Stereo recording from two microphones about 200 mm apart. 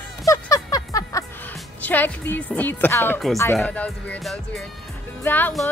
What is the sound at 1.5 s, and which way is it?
A woman's voice, 10° left (ahead or behind).